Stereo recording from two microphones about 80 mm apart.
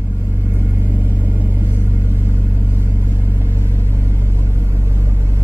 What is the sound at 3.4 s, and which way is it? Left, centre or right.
Vehicle, right.